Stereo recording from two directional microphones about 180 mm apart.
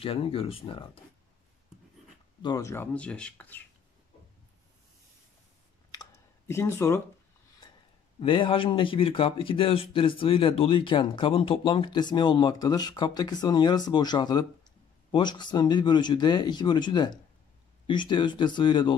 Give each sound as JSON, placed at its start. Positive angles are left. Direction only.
{"t": 0.0, "sound": "speech", "side_deg": 30}
{"t": 2.4, "sound": "speech", "side_deg": 20}
{"t": 5.9, "sound": "a sound", "side_deg": 20}
{"t": 8.2, "sound": "speech", "side_deg": 30}